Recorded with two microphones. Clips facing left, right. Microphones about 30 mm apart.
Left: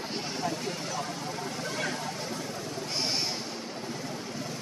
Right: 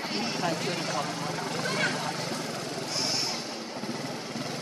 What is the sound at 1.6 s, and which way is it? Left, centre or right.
Vehicle, right.